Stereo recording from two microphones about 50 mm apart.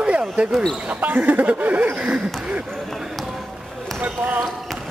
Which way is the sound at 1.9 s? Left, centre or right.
Right.